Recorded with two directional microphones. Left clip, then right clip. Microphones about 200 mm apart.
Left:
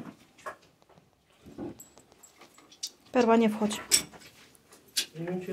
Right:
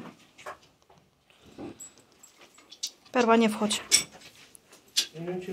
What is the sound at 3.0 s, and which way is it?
Speech, 15° left (ahead or behind).